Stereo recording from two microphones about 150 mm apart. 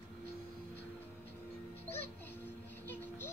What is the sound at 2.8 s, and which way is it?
Music, 15° left (ahead or behind).